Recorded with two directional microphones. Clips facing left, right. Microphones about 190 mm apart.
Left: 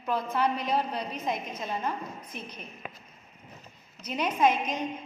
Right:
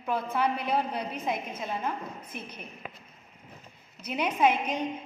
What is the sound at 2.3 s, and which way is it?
Speech, 55° right (ahead or behind).